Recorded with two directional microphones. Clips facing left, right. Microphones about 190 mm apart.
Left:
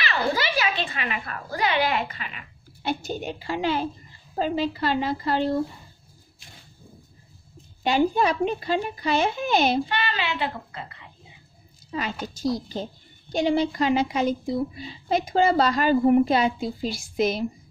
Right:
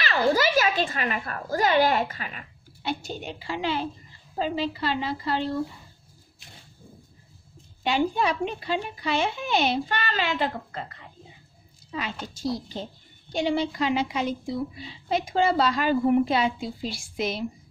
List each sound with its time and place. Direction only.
0.0 s a woman's voice: 45° right (ahead or behind)
2.8 s a woman's voice: 45° left (ahead or behind)
7.8 s a woman's voice: 45° left (ahead or behind)
9.8 s a woman's voice: 45° right (ahead or behind)
11.9 s a woman's voice: 45° left (ahead or behind)